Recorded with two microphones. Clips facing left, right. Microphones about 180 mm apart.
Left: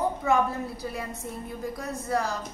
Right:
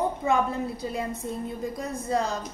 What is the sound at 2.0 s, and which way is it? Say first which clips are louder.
Speech: right 1 dB; 20° right (ahead or behind).